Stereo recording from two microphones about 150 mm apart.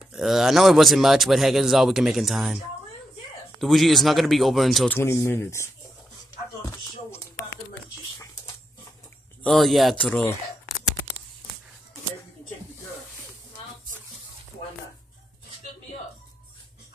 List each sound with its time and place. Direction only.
0.1 s a man's voice: 5° right (ahead or behind)
4.8 s speech: 15° left (ahead or behind)
9.4 s a man's voice: centre (ahead or behind)